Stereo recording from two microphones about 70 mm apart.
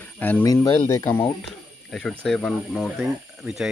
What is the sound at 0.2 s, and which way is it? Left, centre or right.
Speech, left.